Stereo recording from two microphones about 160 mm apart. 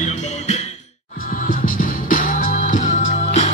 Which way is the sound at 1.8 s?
60° left (ahead or behind).